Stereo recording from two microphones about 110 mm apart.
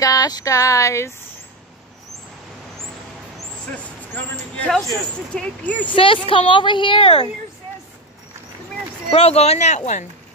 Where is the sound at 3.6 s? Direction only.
10° left (ahead or behind).